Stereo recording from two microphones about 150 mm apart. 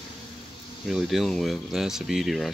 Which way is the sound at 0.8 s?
Centre (ahead or behind).